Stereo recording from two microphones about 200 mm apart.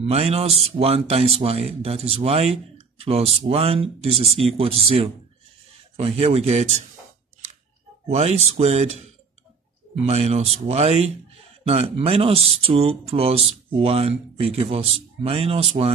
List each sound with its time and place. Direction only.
0.0 s speech: 30° right (ahead or behind)
8.1 s speech: 30° right (ahead or behind)
10.0 s speech: 30° right (ahead or behind)